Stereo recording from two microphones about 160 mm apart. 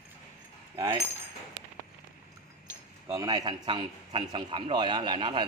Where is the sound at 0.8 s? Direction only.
20° right (ahead or behind).